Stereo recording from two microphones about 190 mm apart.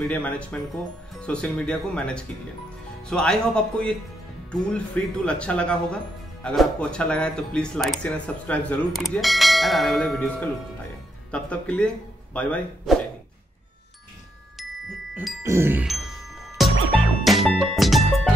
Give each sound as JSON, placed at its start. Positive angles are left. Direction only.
{"t": 0.1, "sound": "speech", "side_deg": 5}
{"t": 15.4, "sound": "a sound", "side_deg": -15}
{"t": 16.6, "sound": "music", "side_deg": 0}